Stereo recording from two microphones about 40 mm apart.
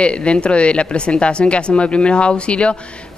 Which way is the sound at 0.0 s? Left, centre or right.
Left.